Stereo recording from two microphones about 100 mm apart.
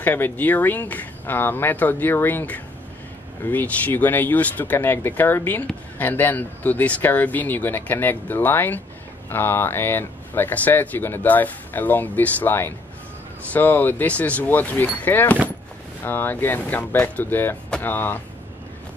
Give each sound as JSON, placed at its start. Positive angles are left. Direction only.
{"t": 0.0, "sound": "speech", "side_deg": 20}